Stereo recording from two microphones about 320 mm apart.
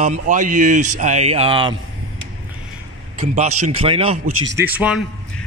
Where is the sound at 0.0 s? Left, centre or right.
Right.